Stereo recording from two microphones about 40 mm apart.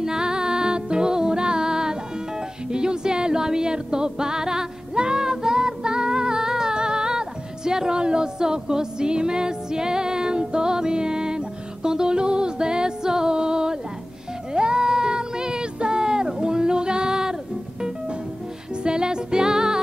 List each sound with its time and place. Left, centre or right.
0.0 s music: centre
14.5 s a sound: right
18.8 s music: right